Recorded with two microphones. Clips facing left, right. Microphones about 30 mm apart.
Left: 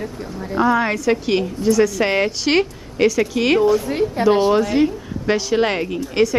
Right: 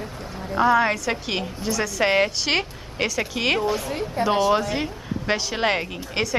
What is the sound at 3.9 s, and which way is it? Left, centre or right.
Speech, centre.